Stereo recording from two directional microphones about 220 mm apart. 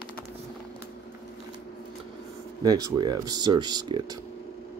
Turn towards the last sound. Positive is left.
turn(degrees=-20)  # may be behind; listen again after turning